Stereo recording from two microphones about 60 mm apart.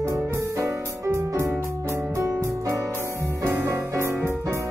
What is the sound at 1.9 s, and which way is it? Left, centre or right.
Music, right.